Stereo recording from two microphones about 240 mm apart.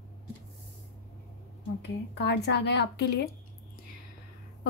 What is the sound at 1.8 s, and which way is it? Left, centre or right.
A woman's voice, left.